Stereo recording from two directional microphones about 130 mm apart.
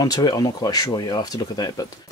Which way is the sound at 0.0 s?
30° left (ahead or behind).